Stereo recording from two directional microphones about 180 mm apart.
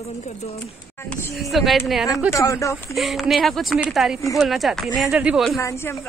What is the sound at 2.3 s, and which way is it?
Speech, 15° left (ahead or behind).